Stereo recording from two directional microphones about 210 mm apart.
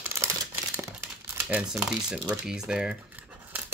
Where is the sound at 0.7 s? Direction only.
10° right (ahead or behind).